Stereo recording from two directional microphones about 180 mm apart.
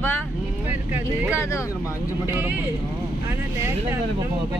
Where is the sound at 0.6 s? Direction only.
10° right (ahead or behind).